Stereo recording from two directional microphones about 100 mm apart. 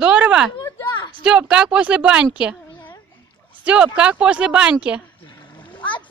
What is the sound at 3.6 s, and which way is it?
Speech, 10° right (ahead or behind).